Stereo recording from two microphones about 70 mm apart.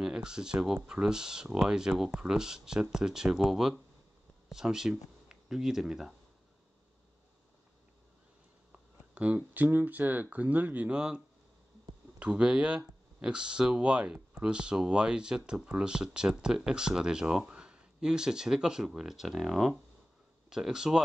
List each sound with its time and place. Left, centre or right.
0.0 s speech: centre
9.1 s speech: right